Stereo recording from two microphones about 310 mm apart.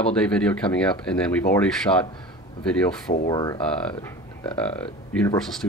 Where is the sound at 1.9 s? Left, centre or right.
Centre.